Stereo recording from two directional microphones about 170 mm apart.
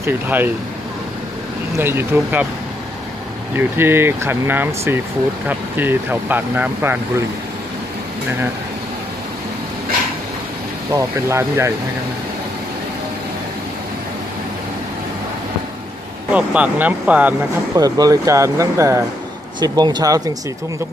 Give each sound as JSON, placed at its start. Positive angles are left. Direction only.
{"t": 0.0, "sound": "speech", "side_deg": -10}
{"t": 1.8, "sound": "speech", "side_deg": -15}
{"t": 3.5, "sound": "speech", "side_deg": -15}
{"t": 10.9, "sound": "speech", "side_deg": -15}
{"t": 16.3, "sound": "speech", "side_deg": -10}
{"t": 17.7, "sound": "speech", "side_deg": -20}